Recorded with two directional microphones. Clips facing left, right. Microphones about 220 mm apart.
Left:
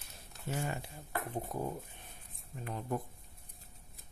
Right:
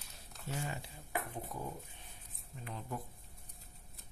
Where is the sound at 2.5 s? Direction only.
55° left (ahead or behind).